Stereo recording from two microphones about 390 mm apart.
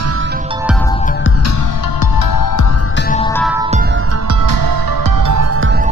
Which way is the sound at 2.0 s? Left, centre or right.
Left.